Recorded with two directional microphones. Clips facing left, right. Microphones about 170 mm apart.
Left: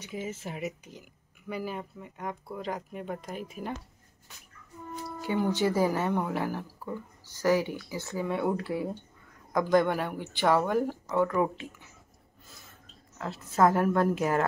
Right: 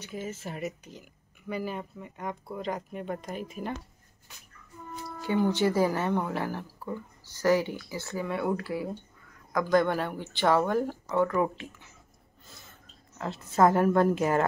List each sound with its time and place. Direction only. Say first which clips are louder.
0.0 s speech: even; 15° left (ahead or behind)
5.2 s speech: right 2 dB; 10° left (ahead or behind)
13.3 s speech: right 1 dB; centre (ahead or behind)